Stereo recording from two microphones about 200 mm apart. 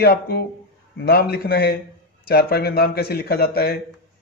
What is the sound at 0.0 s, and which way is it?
A man's voice, 55° left (ahead or behind).